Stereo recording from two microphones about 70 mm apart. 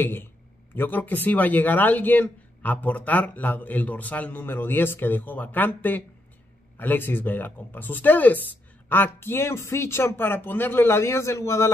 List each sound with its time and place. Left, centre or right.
0.0 s speech: left